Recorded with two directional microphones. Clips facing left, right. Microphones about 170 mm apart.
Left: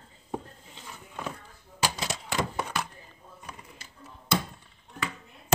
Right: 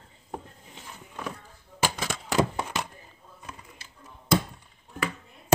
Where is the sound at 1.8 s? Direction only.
50° right (ahead or behind).